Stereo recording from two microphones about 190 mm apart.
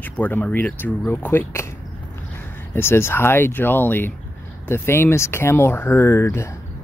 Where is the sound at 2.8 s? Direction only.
10° left (ahead or behind).